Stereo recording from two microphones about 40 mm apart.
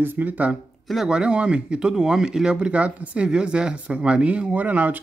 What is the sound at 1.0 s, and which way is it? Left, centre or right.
Speech, right.